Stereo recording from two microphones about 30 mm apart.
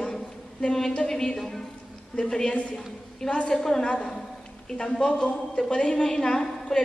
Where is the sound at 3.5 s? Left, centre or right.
Centre.